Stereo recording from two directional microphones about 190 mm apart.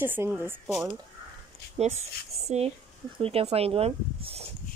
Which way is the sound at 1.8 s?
35° right (ahead or behind).